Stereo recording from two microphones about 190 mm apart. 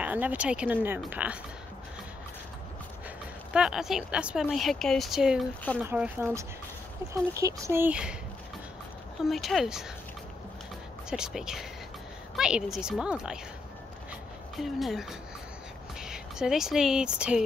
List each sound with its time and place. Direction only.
0.0 s speech: 10° right (ahead or behind)
3.5 s speech: 5° right (ahead or behind)
9.2 s speech: centre (ahead or behind)
11.1 s speech: 5° right (ahead or behind)
14.6 s speech: centre (ahead or behind)